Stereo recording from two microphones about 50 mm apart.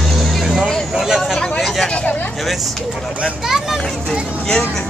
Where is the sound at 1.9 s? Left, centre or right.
Left.